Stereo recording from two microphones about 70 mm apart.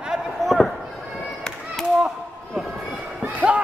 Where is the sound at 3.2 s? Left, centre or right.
Right.